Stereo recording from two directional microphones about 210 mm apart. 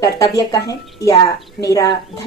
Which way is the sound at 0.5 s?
15° left (ahead or behind).